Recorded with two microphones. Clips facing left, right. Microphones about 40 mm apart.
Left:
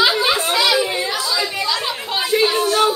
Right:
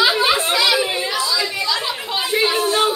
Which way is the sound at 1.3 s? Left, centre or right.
Centre.